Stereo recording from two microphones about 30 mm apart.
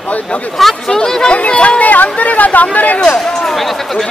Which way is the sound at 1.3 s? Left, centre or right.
Left.